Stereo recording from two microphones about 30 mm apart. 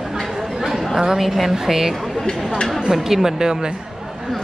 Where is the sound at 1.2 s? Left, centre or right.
Centre.